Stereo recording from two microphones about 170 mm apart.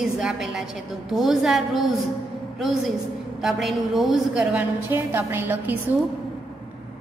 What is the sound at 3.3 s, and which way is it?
A woman's voice, centre (ahead or behind).